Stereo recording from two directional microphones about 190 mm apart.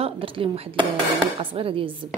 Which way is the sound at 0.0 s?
30° right (ahead or behind).